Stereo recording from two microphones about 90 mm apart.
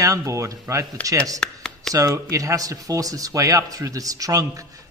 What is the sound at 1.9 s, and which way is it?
Speech, 40° right (ahead or behind).